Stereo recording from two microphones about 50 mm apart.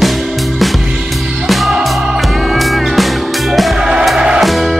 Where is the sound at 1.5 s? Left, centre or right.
Centre.